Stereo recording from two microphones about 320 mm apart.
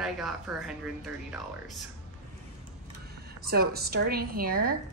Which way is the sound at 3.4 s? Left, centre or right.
Right.